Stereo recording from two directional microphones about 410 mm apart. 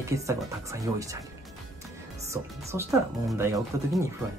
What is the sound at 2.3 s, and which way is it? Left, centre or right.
Speech, centre.